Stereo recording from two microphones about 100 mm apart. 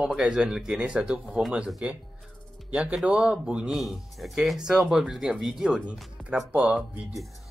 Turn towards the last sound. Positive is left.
turn(degrees=-15)  # may be behind; listen again after turning